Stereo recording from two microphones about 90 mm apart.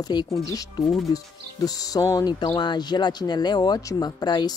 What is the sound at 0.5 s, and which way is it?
Speech, 40° left (ahead or behind).